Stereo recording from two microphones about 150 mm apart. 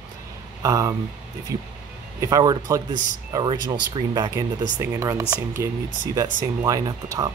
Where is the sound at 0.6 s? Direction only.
20° right (ahead or behind).